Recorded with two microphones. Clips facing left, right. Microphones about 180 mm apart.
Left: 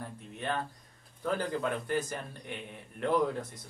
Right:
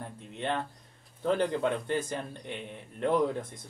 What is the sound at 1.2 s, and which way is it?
A man's voice, 25° right (ahead or behind).